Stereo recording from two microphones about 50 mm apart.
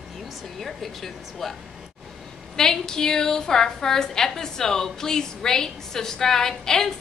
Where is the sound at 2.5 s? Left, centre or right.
Centre.